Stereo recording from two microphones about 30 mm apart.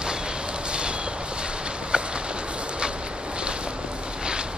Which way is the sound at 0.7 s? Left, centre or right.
Right.